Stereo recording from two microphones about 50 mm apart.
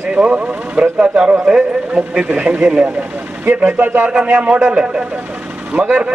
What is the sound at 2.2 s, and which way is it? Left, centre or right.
Speech, right.